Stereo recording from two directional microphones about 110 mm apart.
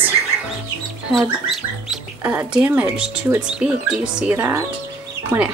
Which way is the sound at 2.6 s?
10° right (ahead or behind).